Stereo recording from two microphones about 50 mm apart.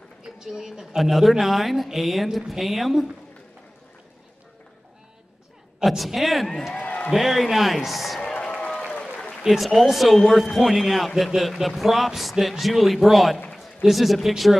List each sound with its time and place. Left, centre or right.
0.2 s a woman's voice: centre
5.9 s a man's voice: centre
6.7 s a sound: left
7.1 s a man's voice: centre
8.4 s applause: left
9.3 s a man's voice: centre